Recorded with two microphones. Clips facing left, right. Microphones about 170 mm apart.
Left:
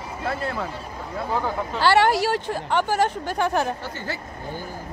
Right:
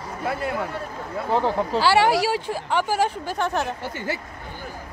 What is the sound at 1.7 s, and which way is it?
Speech, 5° right (ahead or behind).